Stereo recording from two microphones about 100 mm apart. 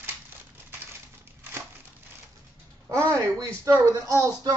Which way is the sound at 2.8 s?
30° right (ahead or behind).